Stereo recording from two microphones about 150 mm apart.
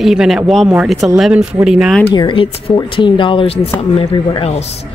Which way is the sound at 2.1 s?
30° left (ahead or behind).